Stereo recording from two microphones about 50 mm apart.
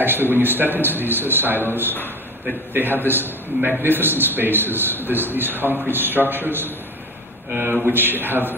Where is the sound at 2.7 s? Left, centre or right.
Right.